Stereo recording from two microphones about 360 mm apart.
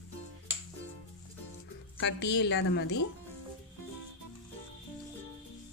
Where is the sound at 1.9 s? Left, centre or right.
Left.